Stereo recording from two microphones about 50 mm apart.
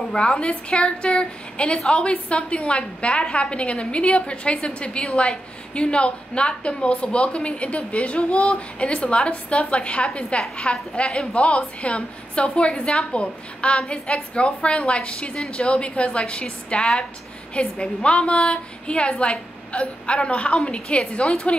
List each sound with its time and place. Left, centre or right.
0.1 s a woman's voice: centre